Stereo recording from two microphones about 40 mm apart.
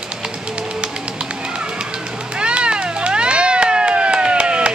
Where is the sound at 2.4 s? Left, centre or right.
Right.